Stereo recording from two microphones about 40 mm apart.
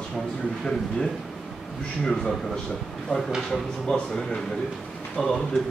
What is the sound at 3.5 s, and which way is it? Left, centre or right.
Speech, centre.